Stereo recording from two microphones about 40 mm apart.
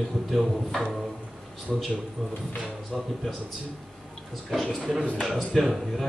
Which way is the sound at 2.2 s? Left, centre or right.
Centre.